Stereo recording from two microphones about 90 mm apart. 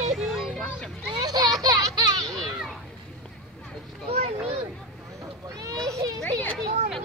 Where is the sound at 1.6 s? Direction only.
45° right (ahead or behind).